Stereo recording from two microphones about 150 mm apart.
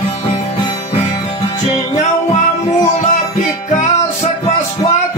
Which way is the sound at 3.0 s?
55° left (ahead or behind).